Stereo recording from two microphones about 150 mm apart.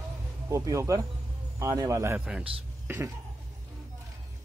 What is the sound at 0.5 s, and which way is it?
A man's voice, 20° right (ahead or behind).